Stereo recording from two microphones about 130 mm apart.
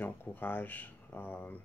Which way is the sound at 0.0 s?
15° left (ahead or behind).